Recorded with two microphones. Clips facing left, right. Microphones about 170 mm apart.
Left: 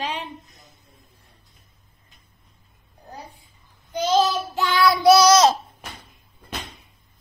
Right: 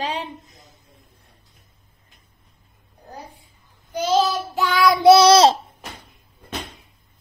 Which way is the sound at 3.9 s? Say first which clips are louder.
Even; 10° right (ahead or behind).